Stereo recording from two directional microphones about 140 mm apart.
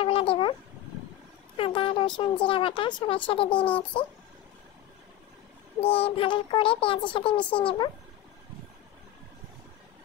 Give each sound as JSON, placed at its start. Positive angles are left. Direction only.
{"t": 0.0, "sound": "a sound", "side_deg": 40}
{"t": 1.6, "sound": "speech", "side_deg": 40}
{"t": 5.8, "sound": "speech", "side_deg": 40}